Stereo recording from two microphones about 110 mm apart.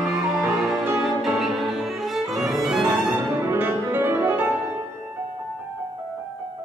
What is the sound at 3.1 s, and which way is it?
Music, 20° right (ahead or behind).